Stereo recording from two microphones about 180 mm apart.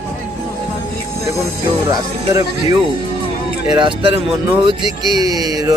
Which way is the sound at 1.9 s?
20° right (ahead or behind).